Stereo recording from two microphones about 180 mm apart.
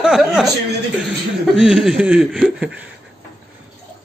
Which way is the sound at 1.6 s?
Centre (ahead or behind).